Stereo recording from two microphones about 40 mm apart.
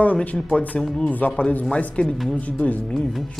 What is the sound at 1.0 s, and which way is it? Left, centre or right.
Speech, left.